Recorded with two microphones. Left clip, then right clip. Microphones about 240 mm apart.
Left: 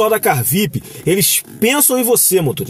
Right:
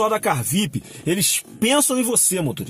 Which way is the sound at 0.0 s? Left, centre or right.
Centre.